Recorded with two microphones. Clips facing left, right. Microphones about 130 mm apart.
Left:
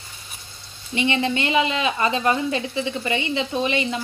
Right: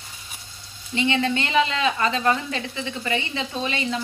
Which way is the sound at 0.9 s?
20° left (ahead or behind).